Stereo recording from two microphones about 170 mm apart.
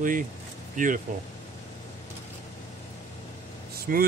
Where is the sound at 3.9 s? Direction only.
55° right (ahead or behind).